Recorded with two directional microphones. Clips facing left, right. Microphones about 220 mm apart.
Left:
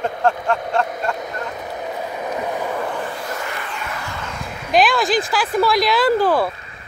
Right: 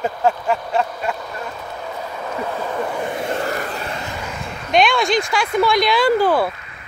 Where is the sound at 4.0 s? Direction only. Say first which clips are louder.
Right 2 dB; 15° right (ahead or behind).